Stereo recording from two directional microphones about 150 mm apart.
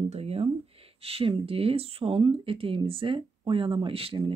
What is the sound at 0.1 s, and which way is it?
Speech, 40° right (ahead or behind).